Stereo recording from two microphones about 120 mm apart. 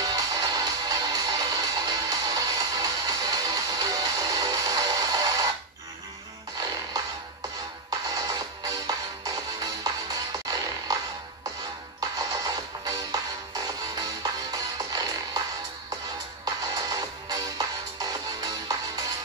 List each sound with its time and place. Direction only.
0.0 s music: 30° right (ahead or behind)
6.6 s music: 30° right (ahead or behind)
12.0 s music: 30° right (ahead or behind)
16.4 s music: 30° right (ahead or behind)